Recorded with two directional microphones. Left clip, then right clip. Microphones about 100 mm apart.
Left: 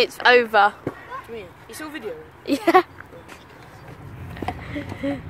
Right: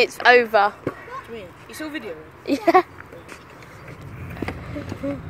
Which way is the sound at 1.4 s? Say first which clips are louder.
Right 2 dB; 90° left.